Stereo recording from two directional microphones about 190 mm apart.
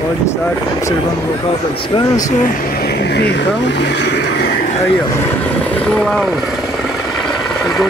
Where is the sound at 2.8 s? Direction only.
60° left (ahead or behind).